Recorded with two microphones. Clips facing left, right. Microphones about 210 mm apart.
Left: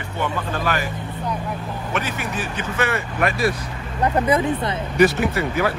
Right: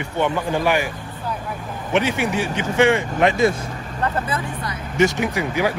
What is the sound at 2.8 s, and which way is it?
Speech, 20° right (ahead or behind).